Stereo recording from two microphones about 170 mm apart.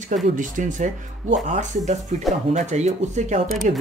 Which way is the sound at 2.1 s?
40° right (ahead or behind).